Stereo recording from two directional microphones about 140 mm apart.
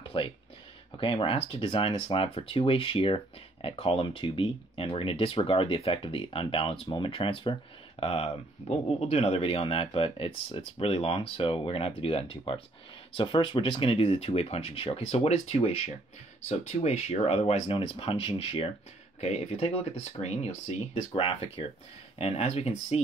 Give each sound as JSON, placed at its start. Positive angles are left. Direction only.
{"t": 0.1, "sound": "speech", "side_deg": 35}